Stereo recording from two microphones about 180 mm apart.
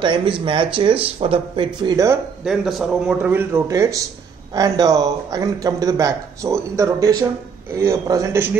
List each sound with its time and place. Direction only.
0.0 s a man's voice: 25° right (ahead or behind)
2.4 s a man's voice: centre (ahead or behind)